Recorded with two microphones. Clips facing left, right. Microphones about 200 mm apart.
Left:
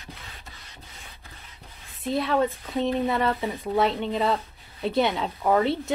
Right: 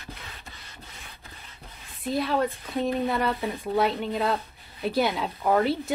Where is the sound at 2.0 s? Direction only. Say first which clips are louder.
Left 2 dB; centre (ahead or behind).